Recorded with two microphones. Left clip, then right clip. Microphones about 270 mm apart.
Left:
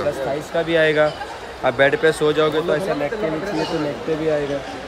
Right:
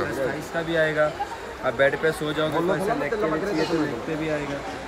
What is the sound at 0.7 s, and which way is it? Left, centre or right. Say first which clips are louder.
Speech: left 5 dB; left.